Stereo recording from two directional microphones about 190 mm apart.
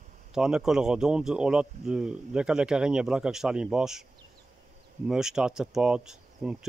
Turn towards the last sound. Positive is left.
turn(degrees=-5)  # may be behind; listen again after turning